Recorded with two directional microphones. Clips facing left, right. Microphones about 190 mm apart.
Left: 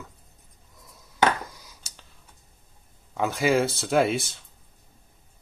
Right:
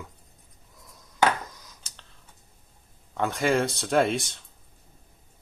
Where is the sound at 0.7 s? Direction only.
Centre (ahead or behind).